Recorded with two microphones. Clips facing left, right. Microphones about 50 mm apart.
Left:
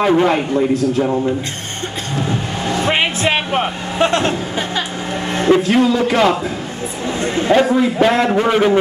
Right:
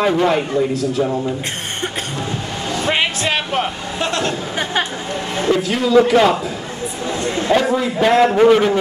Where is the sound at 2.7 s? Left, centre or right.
Left.